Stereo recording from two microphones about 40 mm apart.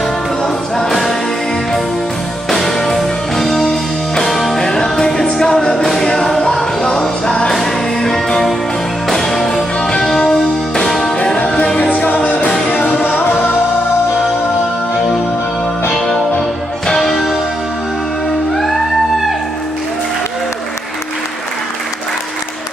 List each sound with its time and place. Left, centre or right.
0.7 s music: centre
2.5 s music: centre
3.6 s music: centre
11.9 s music: left
12.4 s music: centre
16.8 s music: centre